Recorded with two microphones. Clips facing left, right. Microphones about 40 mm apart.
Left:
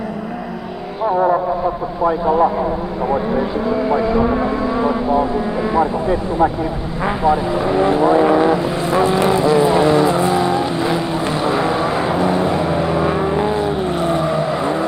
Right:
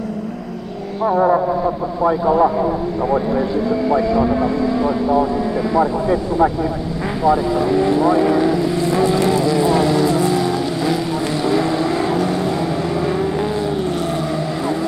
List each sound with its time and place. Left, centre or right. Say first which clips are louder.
3.6 s vehicle: left 1 dB; left
7.1 s vehicle: even; left